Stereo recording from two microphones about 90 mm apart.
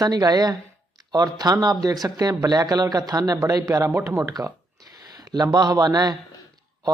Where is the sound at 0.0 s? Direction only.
45° right (ahead or behind).